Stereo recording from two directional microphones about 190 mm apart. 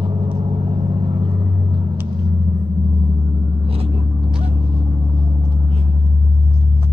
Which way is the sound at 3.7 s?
30° right (ahead or behind).